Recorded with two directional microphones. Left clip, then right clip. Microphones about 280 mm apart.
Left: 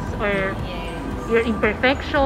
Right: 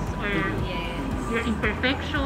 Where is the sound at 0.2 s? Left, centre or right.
Centre.